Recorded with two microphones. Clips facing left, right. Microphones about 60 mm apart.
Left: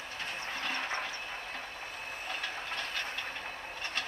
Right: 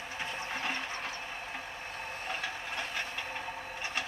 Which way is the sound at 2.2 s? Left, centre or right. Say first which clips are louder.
Even; centre.